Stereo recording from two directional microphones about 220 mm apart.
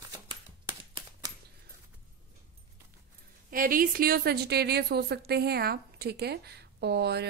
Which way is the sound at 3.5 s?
40° right (ahead or behind).